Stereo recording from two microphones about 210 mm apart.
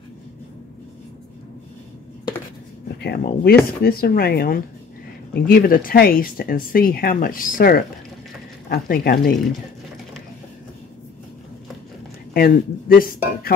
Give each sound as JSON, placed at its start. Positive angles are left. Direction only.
{"t": 3.0, "sound": "speech", "side_deg": 50}
{"t": 12.4, "sound": "speech", "side_deg": 45}